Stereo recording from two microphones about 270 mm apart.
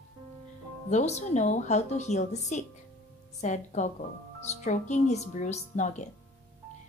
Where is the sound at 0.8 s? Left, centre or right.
Left.